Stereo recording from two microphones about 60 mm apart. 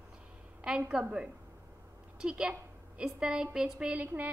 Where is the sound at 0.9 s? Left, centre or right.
Centre.